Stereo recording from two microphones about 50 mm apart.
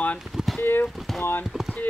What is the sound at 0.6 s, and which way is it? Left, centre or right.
Speech, left.